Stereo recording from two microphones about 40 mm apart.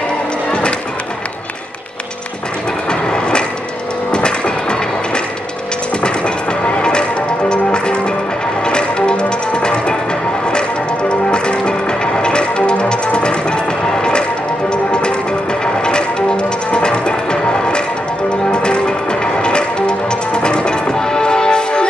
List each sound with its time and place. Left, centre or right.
0.5 s music: left
2.9 s train: left
4.1 s music: left